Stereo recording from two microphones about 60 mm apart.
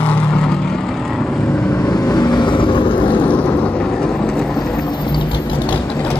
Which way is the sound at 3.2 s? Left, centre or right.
Left.